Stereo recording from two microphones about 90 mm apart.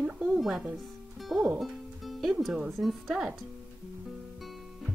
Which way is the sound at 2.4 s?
5° right (ahead or behind).